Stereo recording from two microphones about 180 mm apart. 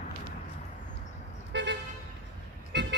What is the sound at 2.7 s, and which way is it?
Vehicle, 70° right (ahead or behind).